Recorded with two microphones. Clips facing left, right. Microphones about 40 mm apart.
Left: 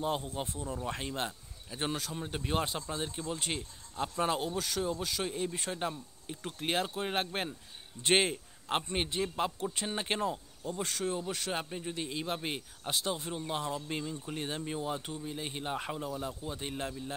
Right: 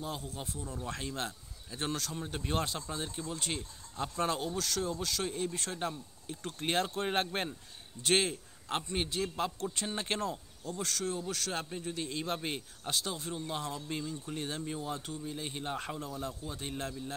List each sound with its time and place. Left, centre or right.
0.0 s speech: left; by 7.5 s centre
8.0 s a man's voice: left